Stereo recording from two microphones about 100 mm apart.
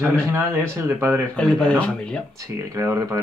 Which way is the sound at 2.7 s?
30° right (ahead or behind).